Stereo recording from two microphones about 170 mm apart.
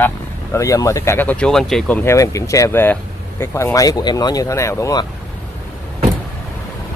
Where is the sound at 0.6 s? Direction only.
20° left (ahead or behind).